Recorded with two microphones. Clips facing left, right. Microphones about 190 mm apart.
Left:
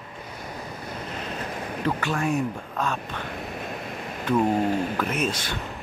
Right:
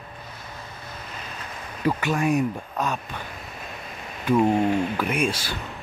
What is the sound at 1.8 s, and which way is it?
Speech, 15° right (ahead or behind).